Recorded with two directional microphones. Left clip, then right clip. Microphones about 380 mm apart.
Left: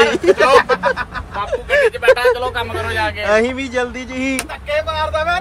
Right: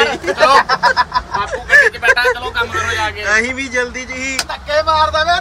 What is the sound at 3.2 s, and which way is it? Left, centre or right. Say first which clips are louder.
Speech: left 1 dB; centre.